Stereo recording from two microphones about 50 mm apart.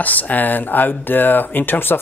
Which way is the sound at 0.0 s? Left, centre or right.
Left.